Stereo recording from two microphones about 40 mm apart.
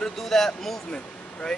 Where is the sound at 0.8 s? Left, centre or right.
Left.